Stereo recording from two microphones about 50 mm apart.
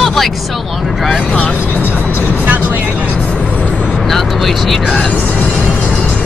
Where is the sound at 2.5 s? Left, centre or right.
Right.